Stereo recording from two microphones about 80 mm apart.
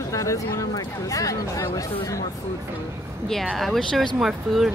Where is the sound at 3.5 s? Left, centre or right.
Centre.